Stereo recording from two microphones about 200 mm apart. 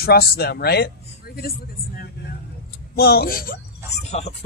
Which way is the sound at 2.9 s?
50° left (ahead or behind).